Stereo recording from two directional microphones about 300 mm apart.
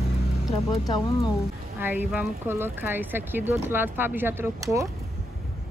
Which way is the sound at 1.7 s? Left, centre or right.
Centre.